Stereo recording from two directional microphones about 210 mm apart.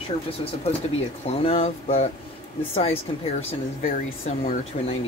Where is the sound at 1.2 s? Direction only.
30° left (ahead or behind).